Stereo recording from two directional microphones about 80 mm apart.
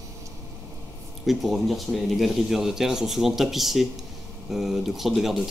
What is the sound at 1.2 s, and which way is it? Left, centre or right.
Speech, centre.